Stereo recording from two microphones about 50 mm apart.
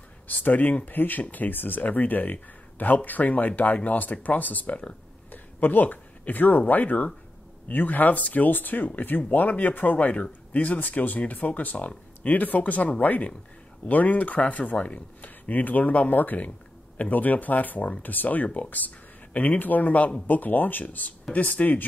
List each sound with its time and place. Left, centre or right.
0.3 s speech: left
5.3 s a sound: left
6.7 s speech: left